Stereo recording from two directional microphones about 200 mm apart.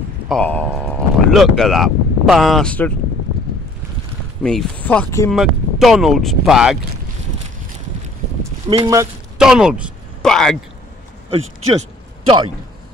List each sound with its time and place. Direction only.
0.3 s speech: 5° left (ahead or behind)
4.4 s speech: centre (ahead or behind)
5.3 s speech: centre (ahead or behind)
8.6 s speech: 20° right (ahead or behind)
9.4 s speech: 5° right (ahead or behind)